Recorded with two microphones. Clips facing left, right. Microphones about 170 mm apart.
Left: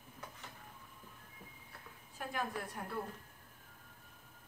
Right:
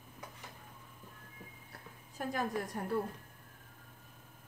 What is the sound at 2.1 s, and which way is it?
Speech, 40° right (ahead or behind).